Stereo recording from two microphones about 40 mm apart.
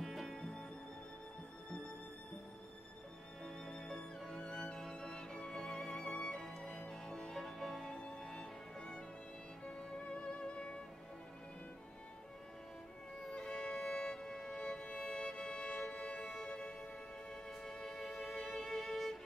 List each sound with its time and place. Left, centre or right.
0.0 s music: centre
3.4 s music: centre
6.0 s music: left
7.9 s music: left
10.4 s music: centre
13.3 s music: left
17.7 s music: centre